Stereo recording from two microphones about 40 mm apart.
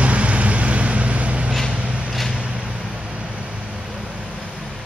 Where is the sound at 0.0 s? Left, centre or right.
Right.